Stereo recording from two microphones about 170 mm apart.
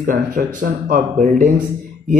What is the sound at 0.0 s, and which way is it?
Speech, 55° right (ahead or behind).